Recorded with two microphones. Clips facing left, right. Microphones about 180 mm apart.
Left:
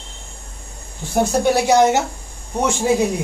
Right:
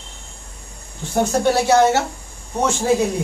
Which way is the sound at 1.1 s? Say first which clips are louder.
Left 1 dB; 10° left (ahead or behind).